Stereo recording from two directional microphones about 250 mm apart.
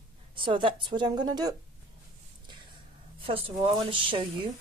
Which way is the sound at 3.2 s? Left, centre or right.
Right.